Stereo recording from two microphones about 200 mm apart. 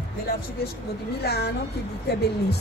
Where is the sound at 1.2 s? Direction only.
55° left (ahead or behind).